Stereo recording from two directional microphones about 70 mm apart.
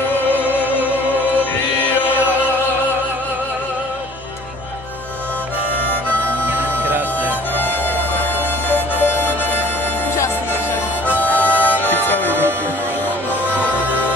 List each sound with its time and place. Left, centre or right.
6.0 s music: right
8.2 s music: left
10.1 s music: left
11.1 s harmonica: left
11.8 s music: left
13.6 s music: left